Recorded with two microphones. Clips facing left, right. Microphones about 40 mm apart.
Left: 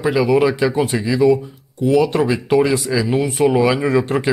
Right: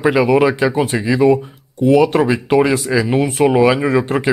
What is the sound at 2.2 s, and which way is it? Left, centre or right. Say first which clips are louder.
Speech: right 2 dB; right.